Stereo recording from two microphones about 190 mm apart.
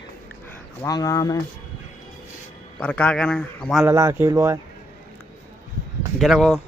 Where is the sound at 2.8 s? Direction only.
5° left (ahead or behind).